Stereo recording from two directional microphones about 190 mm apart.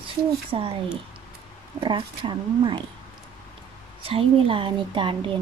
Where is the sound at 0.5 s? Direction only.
30° right (ahead or behind).